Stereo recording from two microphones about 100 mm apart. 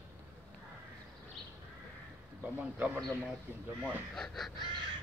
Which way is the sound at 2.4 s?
15° right (ahead or behind).